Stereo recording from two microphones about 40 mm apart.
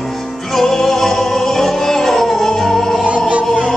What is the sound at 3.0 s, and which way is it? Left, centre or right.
Music, right.